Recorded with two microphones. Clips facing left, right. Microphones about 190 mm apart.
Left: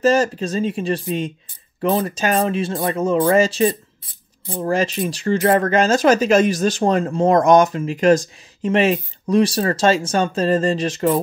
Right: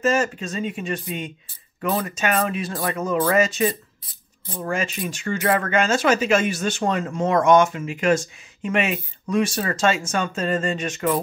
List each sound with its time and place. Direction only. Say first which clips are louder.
0.0 s speech: left 5 dB; 35° left (ahead or behind)